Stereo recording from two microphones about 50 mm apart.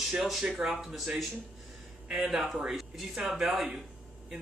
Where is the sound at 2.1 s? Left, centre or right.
Centre.